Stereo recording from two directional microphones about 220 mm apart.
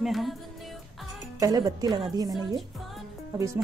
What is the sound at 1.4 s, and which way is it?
A woman's voice, 15° right (ahead or behind).